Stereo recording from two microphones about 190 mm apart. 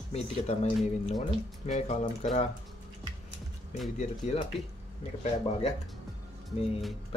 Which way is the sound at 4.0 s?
35° left (ahead or behind).